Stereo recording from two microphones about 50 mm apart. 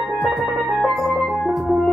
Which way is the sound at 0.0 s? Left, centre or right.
Centre.